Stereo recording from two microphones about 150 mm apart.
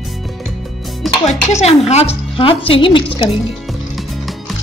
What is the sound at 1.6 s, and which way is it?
Speech, 45° left (ahead or behind).